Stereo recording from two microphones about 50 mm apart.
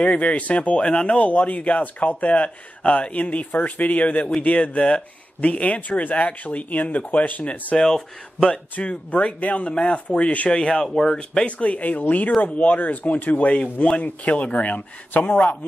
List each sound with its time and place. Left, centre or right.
0.0 s speech: left
7.7 s speech: centre
8.7 s speech: left
10.5 s speech: centre; by 15.3 s left